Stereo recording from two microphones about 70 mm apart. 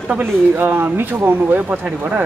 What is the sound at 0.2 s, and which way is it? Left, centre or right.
Speech, right.